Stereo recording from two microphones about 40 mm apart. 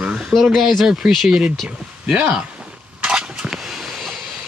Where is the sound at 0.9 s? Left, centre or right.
Centre.